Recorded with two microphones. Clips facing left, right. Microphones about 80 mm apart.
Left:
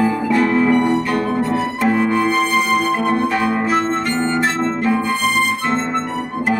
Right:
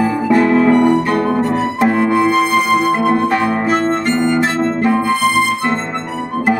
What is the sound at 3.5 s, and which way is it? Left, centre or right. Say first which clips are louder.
Music: right 2 dB; right.